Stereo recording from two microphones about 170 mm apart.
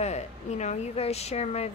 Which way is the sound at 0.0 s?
40° left (ahead or behind).